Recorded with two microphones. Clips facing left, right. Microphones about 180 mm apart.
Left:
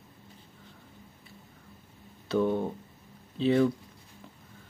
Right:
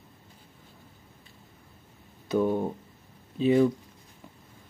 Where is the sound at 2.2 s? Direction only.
15° right (ahead or behind).